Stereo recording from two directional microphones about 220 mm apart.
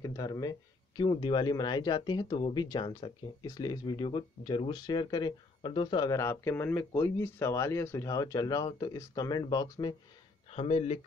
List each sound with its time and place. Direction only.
0.0 s speech: 15° left (ahead or behind)